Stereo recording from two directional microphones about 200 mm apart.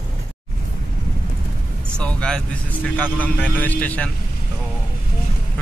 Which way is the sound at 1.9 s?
5° left (ahead or behind).